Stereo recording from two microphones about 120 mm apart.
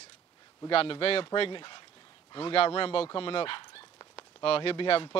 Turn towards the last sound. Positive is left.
turn(degrees=45)  # may be behind; listen again after turning